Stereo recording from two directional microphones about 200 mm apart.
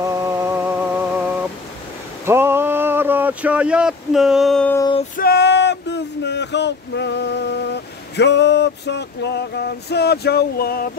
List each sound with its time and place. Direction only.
0.0 s music: 15° right (ahead or behind)
2.2 s a sound: 10° right (ahead or behind)
4.7 s female singing: 20° left (ahead or behind)
5.1 s speech: 50° left (ahead or behind)